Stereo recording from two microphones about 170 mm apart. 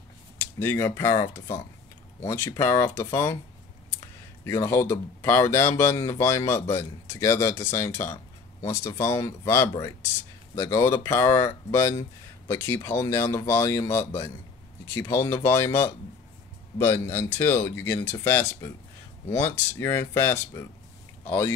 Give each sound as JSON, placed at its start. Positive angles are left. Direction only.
{"t": 0.6, "sound": "speech", "side_deg": 15}
{"t": 4.5, "sound": "speech", "side_deg": 20}